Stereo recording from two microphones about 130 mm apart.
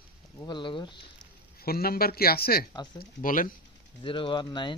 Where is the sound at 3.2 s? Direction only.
90° left.